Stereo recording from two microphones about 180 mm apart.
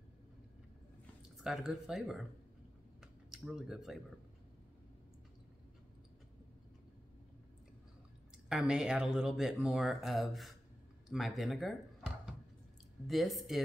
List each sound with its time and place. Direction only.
1.4 s speech: 5° right (ahead or behind)
3.0 s a sound: centre (ahead or behind)
8.5 s speech: 5° right (ahead or behind)